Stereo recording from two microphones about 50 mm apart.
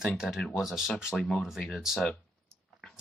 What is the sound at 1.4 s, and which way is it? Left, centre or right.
Speech, centre.